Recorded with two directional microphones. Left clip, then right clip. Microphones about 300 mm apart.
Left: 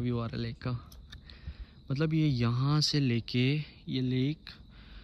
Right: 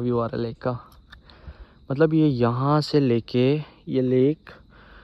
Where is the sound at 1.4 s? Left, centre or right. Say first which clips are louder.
Right 15 dB; centre.